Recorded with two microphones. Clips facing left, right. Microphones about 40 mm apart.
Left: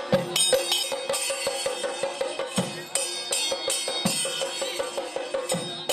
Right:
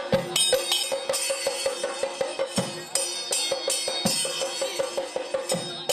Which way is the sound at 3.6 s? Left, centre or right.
Left.